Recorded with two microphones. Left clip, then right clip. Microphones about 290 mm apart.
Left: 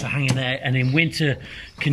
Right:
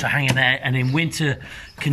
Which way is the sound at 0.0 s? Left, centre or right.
Right.